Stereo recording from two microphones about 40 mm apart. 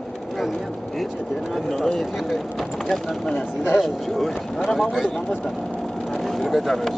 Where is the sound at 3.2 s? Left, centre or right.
Centre.